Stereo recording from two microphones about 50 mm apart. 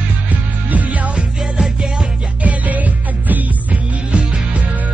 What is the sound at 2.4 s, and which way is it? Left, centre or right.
Music, right.